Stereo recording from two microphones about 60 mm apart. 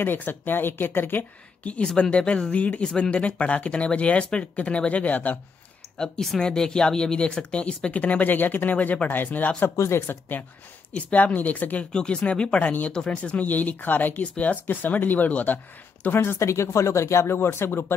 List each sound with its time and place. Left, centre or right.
0.0 s speech: left
1.6 s speech: left
5.9 s speech: centre; by 9.5 s left
9.8 s speech: left
10.0 s speech: left
11.9 s speech: centre
16.2 s speech: left